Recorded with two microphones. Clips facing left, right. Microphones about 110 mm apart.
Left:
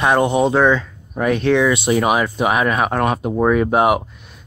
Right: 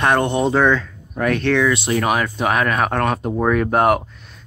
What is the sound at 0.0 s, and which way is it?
Speech, 5° left (ahead or behind).